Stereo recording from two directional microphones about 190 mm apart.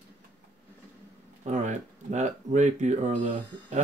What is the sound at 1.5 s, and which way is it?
Speech, 40° right (ahead or behind).